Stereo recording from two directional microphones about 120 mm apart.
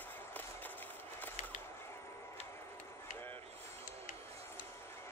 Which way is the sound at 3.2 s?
20° left (ahead or behind).